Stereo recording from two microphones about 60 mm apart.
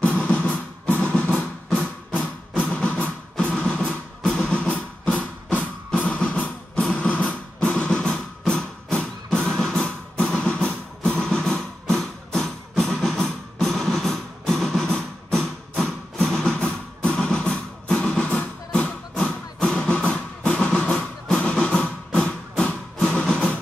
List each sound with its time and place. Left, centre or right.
0.0 s music: left